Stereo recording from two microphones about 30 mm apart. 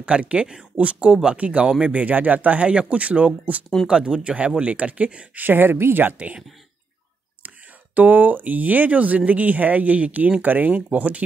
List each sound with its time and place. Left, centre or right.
0.0 s speech: right
1.0 s speech: right
1.3 s speech: right
1.9 s speech: right
3.8 s speech: right
4.6 s speech: right
5.3 s speech: right
7.4 s speech: right
10.4 s speech: right
10.7 s speech: right